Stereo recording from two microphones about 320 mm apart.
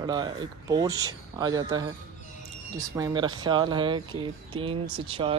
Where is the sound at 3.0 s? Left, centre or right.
Centre.